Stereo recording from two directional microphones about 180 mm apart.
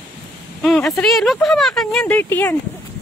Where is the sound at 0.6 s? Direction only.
5° left (ahead or behind).